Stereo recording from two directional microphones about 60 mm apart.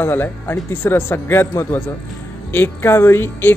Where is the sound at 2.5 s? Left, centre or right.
Left.